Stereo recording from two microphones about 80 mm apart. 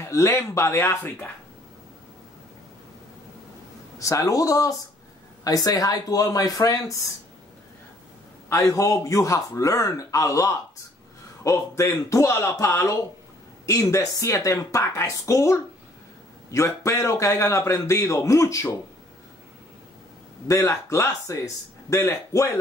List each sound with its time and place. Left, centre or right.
0.0 s a man's voice: left
4.0 s a man's voice: left
8.5 s a man's voice: left
20.4 s a man's voice: left